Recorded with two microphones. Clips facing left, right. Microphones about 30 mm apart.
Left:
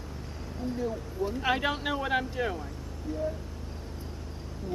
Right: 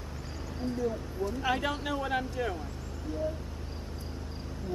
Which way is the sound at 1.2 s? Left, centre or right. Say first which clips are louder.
Left 2 dB; left.